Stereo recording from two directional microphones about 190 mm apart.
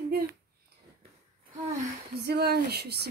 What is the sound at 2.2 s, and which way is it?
Speech, 55° right (ahead or behind).